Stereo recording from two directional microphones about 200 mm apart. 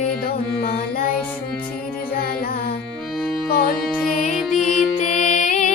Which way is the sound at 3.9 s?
5° left (ahead or behind).